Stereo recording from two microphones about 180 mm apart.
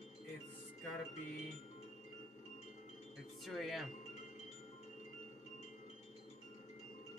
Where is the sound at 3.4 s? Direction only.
Centre (ahead or behind).